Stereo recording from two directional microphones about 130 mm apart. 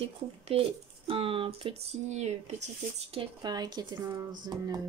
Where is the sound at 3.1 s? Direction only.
40° right (ahead or behind).